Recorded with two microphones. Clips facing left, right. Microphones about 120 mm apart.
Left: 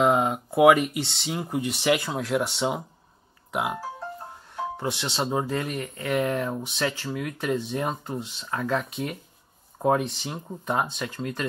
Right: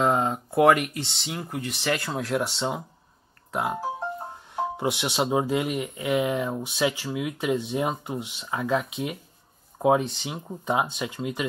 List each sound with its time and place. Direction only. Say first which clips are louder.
0.0 s a sound: left 2 dB; 5° left (ahead or behind)
0.9 s speech: left 3 dB; 15° left (ahead or behind)
2.1 s speech: left 1 dB; centre (ahead or behind)
4.7 s speech: right 3 dB; 15° right (ahead or behind)